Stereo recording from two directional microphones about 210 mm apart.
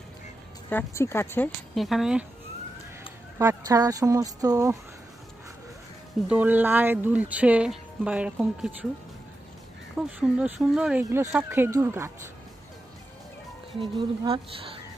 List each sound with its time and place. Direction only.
0.7 s speech: 10° left (ahead or behind)
1.8 s speech: centre (ahead or behind)
3.3 s speech: 15° right (ahead or behind)
6.2 s speech: 10° right (ahead or behind)
10.2 s speech: 5° right (ahead or behind)
13.7 s a woman's voice: 25° right (ahead or behind)